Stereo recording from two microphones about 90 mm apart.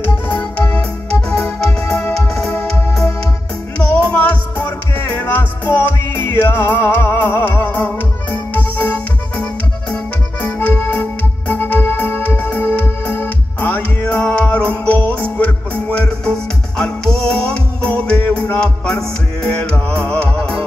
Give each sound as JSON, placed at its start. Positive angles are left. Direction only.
{"t": 0.3, "sound": "music", "side_deg": 15}